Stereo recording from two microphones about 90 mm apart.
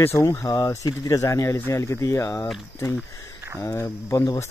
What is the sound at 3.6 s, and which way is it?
Speech, 30° left (ahead or behind).